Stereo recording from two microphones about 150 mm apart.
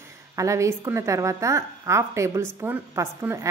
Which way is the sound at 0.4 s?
20° right (ahead or behind).